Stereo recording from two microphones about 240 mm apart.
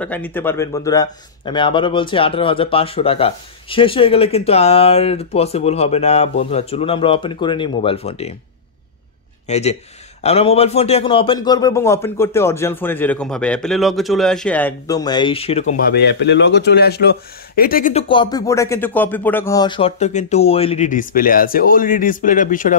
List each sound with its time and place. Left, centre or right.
0.0 s speech: centre; by 8.4 s left
9.5 s a man's voice: left
15.9 s speech: left
18.0 s speech: centre